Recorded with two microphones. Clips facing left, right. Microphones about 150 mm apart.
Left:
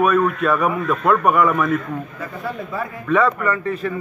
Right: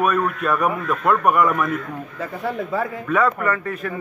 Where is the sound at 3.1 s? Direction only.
Centre (ahead or behind).